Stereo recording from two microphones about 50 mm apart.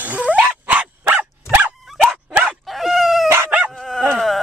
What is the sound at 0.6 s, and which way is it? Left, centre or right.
Dog, right.